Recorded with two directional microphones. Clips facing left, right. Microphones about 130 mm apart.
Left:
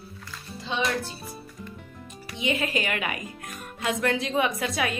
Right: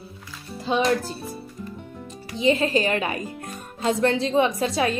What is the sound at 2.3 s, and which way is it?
Speech, 30° right (ahead or behind).